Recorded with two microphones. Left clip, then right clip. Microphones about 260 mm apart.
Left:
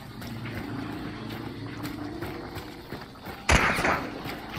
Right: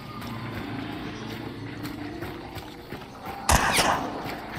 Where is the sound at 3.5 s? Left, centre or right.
Right.